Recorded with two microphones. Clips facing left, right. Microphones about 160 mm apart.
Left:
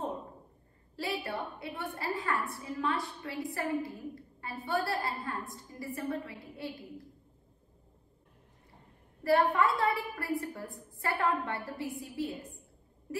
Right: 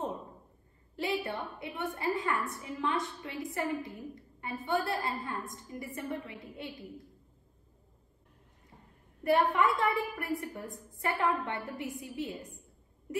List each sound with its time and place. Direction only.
0.9 s a woman's voice: 20° right (ahead or behind)
9.2 s a woman's voice: 20° right (ahead or behind)